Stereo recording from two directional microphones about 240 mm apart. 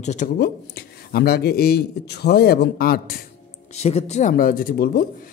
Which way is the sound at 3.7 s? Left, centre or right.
Left.